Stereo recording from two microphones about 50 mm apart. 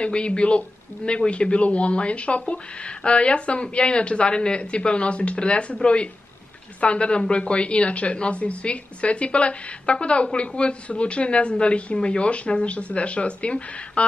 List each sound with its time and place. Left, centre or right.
0.0 s a woman's voice: centre